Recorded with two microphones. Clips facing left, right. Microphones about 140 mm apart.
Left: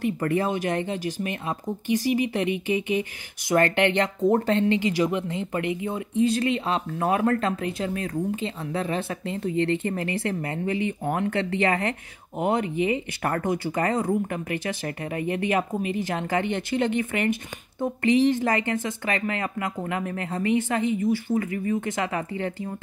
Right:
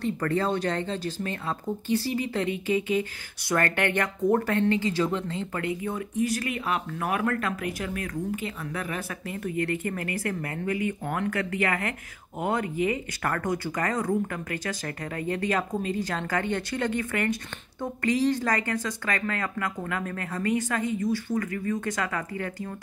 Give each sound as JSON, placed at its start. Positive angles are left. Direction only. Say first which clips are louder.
{"t": 0.0, "sound": "speech", "louder": "left 2 dB", "side_deg": 15}